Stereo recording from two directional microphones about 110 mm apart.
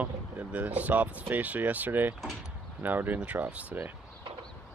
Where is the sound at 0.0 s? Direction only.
15° right (ahead or behind).